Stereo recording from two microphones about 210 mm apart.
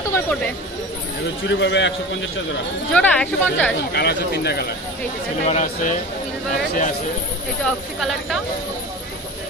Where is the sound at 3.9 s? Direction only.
50° left (ahead or behind).